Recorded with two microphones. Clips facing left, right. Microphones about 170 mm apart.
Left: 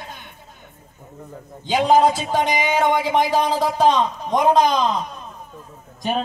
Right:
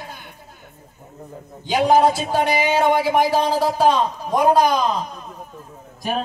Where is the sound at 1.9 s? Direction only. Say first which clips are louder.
Even; 15° left (ahead or behind).